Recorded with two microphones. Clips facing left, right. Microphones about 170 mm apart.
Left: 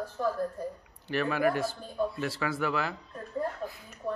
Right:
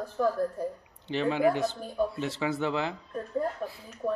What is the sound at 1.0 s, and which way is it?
Speech, 20° right (ahead or behind).